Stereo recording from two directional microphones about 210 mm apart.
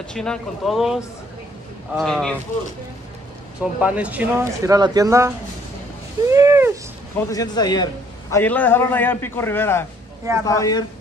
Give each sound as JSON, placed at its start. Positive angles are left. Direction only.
{"t": 0.1, "sound": "speech", "side_deg": 5}
{"t": 3.8, "sound": "speech", "side_deg": -5}
{"t": 6.3, "sound": "a sound", "side_deg": -15}
{"t": 7.2, "sound": "a man's voice", "side_deg": 15}